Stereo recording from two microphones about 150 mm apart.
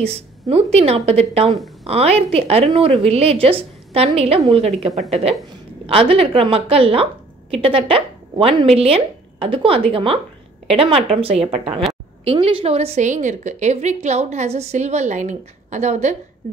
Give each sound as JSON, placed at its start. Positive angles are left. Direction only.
{"t": 0.0, "sound": "a woman's voice", "side_deg": -40}